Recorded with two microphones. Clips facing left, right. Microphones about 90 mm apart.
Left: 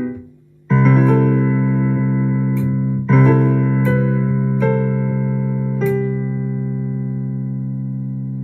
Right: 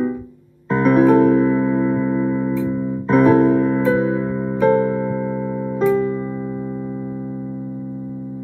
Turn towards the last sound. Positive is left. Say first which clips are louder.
# left 2 dB
turn(degrees=-25)  # may be behind; listen again after turning